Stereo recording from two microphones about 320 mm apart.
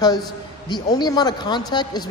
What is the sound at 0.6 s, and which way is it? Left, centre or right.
Speech, centre.